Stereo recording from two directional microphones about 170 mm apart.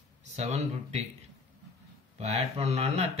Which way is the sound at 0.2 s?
40° right (ahead or behind).